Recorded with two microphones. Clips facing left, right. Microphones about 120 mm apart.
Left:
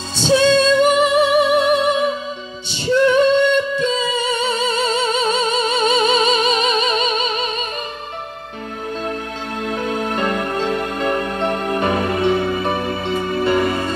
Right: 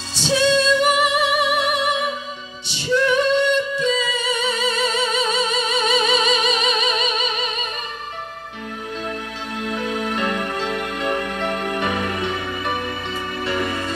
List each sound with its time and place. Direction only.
0.2 s music: 35° left (ahead or behind)
2.7 s a capella: 30° left (ahead or behind)
3.7 s music: 30° left (ahead or behind)
9.6 s music: 35° left (ahead or behind)